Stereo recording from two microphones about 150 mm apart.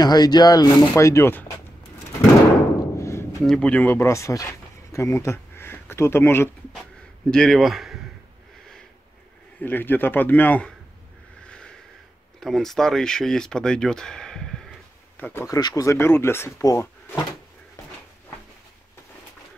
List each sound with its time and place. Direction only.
0.0 s speech: 25° left (ahead or behind)
3.0 s a sound: 20° left (ahead or behind)
3.4 s speech: 5° left (ahead or behind)
7.2 s speech: 5° left (ahead or behind)
9.6 s speech: 15° left (ahead or behind)
11.4 s a sound: 5° left (ahead or behind)
12.4 s speech: centre (ahead or behind)
15.4 s speech: 25° left (ahead or behind)